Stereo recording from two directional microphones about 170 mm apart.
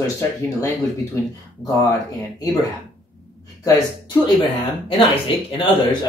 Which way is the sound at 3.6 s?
20° left (ahead or behind).